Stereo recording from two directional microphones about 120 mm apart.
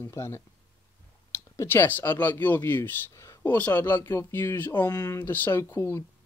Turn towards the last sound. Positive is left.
turn(degrees=20)  # may be behind; listen again after turning